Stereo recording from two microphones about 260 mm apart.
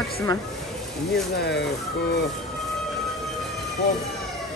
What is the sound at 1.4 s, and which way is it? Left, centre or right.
Speech, left.